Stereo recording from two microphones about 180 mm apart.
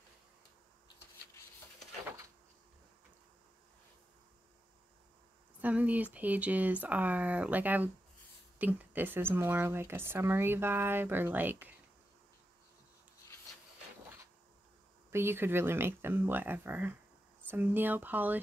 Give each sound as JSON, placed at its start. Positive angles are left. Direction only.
{"t": 5.6, "sound": "speech", "side_deg": -10}
{"t": 15.0, "sound": "speech", "side_deg": -15}